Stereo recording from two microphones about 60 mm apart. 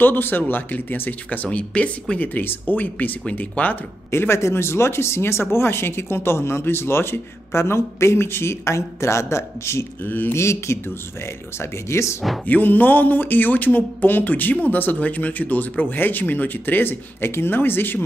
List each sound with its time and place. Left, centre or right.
0.0 s speech: left; by 2.1 s centre
2.1 s speech: left
4.1 s speech: left
10.0 s speech: left
10.3 s speech: left
12.4 s speech: left